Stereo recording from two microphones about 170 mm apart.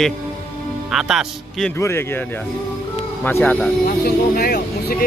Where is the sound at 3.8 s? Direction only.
60° left (ahead or behind).